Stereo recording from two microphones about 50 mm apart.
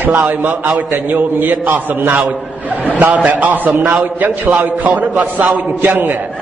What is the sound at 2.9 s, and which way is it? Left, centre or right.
A man's voice, right.